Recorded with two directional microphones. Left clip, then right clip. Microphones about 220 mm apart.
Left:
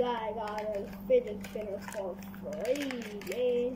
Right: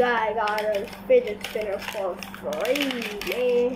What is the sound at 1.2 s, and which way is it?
Speech, 15° right (ahead or behind).